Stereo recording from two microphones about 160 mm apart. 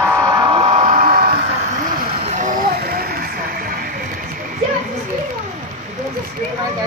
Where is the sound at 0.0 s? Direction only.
20° right (ahead or behind); by 1.3 s 60° right (ahead or behind).